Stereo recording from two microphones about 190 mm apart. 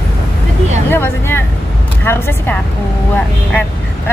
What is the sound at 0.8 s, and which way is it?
A woman's voice, 10° left (ahead or behind).